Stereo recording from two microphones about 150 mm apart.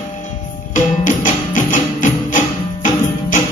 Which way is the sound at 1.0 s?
60° left (ahead or behind).